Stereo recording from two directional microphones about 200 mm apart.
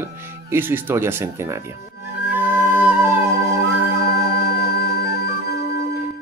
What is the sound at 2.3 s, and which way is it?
Music, 10° right (ahead or behind).